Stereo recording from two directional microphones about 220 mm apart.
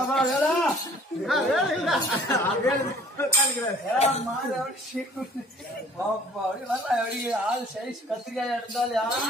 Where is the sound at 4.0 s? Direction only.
30° left (ahead or behind).